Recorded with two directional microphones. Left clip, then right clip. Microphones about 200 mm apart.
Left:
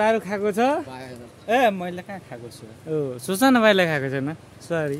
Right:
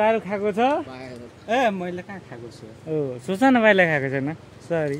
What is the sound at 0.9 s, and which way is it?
Speech, 50° left (ahead or behind).